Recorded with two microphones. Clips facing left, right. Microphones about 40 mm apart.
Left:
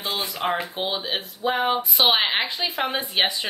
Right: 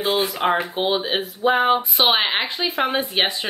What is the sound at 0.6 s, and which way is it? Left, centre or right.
Speech, centre.